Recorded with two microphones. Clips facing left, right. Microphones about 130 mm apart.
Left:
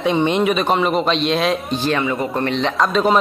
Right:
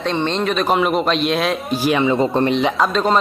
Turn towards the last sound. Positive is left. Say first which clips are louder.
# left 1 dB
turn(degrees=5)  # may be behind; listen again after turning